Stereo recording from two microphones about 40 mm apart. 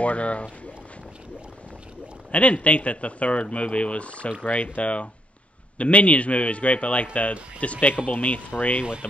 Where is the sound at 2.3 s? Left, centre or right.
Left.